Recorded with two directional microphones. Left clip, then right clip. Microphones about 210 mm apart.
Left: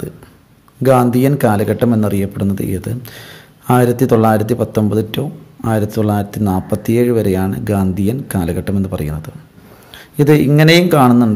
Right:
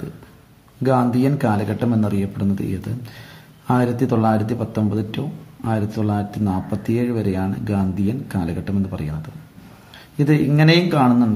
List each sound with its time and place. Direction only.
0.8 s speech: 40° left (ahead or behind)